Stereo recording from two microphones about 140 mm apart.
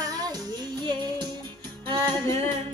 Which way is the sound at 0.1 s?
30° right (ahead or behind).